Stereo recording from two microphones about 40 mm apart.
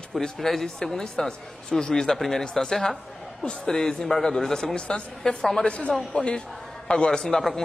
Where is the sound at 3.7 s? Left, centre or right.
Centre.